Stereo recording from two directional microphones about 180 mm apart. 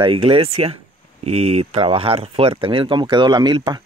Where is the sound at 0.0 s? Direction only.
30° right (ahead or behind).